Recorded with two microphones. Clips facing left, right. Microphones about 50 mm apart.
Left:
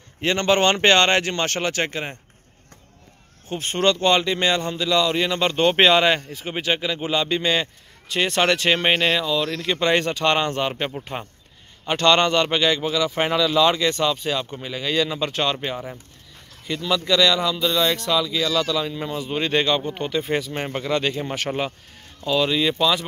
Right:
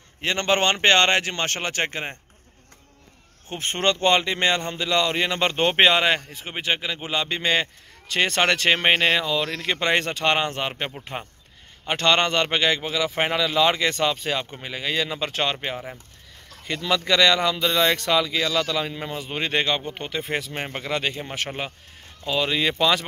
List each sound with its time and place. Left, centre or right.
0.4 s speech: centre
3.6 s speech: right
8.1 s speech: right
8.4 s speech: right
16.6 s speech: right
18.5 s speech: right; by 21.2 s centre
22.2 s speech: right